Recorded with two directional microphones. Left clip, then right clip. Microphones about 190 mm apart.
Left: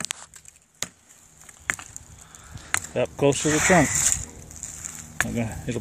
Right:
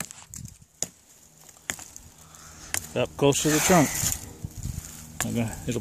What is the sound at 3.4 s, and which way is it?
Speech, 40° right (ahead or behind).